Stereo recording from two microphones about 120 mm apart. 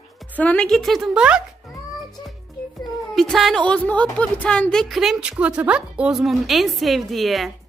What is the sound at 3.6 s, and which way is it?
A woman's voice, 10° left (ahead or behind).